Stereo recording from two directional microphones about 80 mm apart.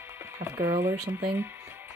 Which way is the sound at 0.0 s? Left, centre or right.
Right.